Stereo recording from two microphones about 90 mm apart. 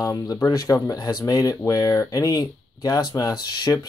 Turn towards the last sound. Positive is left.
turn(degrees=50)  # may be behind; listen again after turning